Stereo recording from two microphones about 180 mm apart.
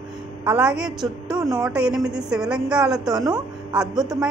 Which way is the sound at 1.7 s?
5° right (ahead or behind).